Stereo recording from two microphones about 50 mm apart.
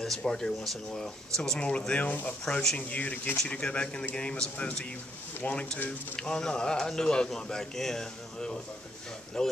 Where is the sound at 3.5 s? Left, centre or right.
Left.